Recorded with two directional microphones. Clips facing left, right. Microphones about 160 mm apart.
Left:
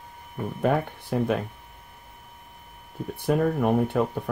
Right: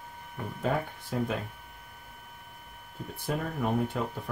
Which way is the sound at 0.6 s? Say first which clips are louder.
Left 6 dB; 65° left (ahead or behind).